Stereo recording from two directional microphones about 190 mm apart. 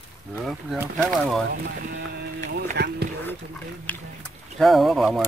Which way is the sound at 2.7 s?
55° right (ahead or behind).